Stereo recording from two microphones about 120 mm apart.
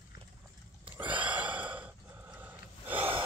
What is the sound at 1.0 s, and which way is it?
Gasp, 15° right (ahead or behind).